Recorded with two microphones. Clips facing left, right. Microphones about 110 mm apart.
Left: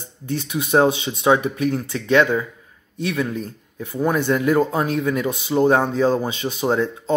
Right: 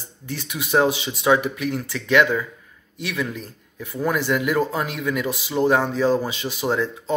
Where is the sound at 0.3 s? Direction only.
25° left (ahead or behind).